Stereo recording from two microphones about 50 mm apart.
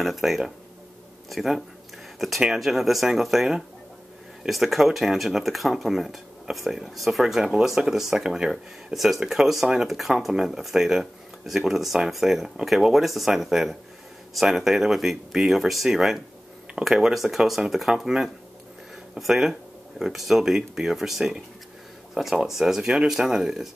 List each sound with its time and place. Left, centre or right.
0.0 s speech: centre
22.2 s speech: right
22.5 s speech: centre